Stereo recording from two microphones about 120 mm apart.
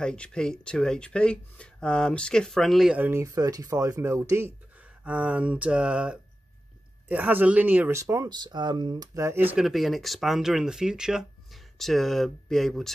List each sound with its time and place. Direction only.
0.0 s speech: 10° left (ahead or behind)
3.0 s speech: 20° right (ahead or behind)
5.0 s a sound: 10° right (ahead or behind)
8.0 s speech: 25° right (ahead or behind)
9.6 s speech: centre (ahead or behind)